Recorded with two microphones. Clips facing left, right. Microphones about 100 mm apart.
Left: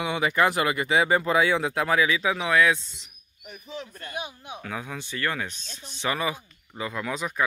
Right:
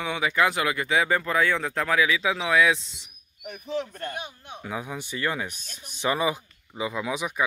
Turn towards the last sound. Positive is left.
turn(degrees=-5)  # may be behind; listen again after turning